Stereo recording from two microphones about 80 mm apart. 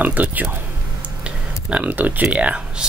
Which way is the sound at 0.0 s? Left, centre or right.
Centre.